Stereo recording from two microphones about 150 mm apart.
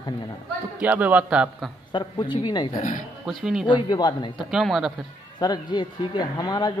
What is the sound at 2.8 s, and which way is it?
Speech, 55° left (ahead or behind).